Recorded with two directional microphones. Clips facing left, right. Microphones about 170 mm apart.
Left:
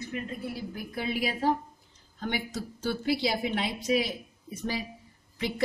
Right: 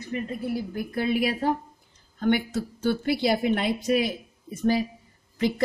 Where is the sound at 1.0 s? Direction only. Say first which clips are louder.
Right 3 dB; 55° right (ahead or behind).